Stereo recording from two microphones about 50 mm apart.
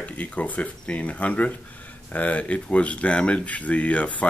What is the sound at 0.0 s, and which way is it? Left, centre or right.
Speech, left.